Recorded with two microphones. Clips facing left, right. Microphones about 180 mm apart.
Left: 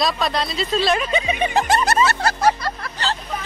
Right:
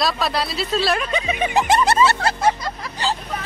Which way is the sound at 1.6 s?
25° right (ahead or behind).